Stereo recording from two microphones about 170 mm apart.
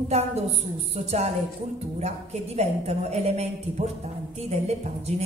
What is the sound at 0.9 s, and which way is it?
Speech, 40° right (ahead or behind).